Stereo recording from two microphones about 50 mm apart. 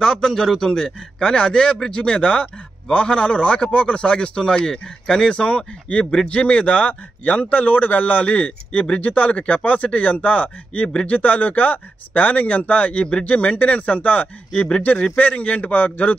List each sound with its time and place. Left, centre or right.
0.0 s a man's voice: centre; by 16.2 s left